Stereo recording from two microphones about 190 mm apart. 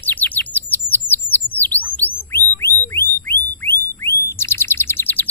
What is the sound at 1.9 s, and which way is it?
Chirp tone, 10° left (ahead or behind).